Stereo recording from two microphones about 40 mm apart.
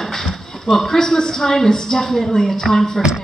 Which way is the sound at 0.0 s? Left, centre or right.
Centre.